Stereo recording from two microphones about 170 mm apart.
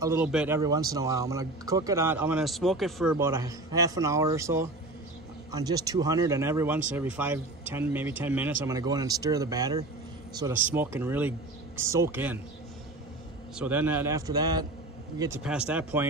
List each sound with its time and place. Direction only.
0.0 s speech: 15° right (ahead or behind)
0.6 s speech: 20° right (ahead or behind); by 3.2 s centre (ahead or behind)
3.2 s speech: 15° right (ahead or behind)
13.6 s speech: 10° right (ahead or behind)
15.4 s speech: 5° right (ahead or behind)